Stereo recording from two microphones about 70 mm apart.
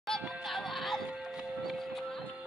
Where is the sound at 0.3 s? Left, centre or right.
Centre.